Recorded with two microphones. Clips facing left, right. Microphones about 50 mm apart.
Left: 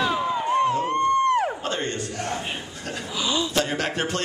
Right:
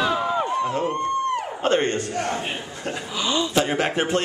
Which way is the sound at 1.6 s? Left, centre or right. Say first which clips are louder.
Right 7 dB; right.